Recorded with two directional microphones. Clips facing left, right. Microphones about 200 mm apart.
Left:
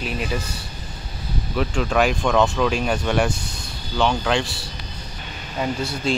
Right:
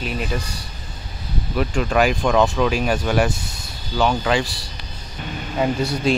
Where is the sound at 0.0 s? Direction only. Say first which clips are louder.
Right 1 dB; centre (ahead or behind).